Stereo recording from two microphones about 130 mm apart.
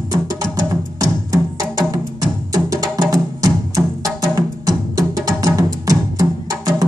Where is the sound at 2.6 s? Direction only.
25° right (ahead or behind).